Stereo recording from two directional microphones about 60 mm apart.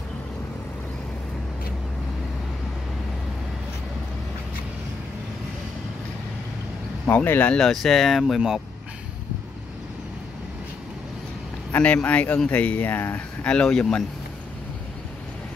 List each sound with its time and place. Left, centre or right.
7.1 s speech: left
7.5 s speech: centre
11.8 s speech: left
13.5 s speech: centre